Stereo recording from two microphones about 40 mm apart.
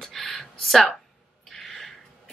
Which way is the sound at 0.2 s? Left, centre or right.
Centre.